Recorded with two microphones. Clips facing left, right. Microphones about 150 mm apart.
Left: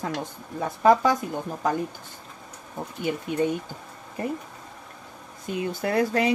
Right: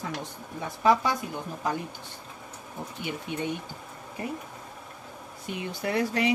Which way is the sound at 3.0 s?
40° left (ahead or behind).